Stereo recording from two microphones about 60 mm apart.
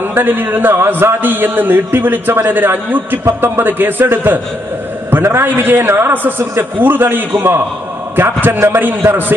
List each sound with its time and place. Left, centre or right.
0.1 s a man's voice: right
5.9 s speech: right
6.8 s a man's voice: right